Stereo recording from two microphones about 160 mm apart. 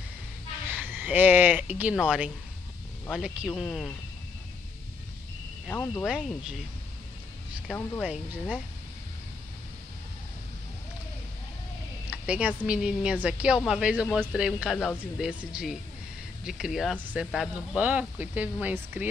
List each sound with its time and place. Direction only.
0.7 s speech: 10° right (ahead or behind)
5.7 s speech: 10° left (ahead or behind)
6.0 s speech: 5° right (ahead or behind)
8.0 s speech: 10° right (ahead or behind)
12.1 s speech: 10° right (ahead or behind)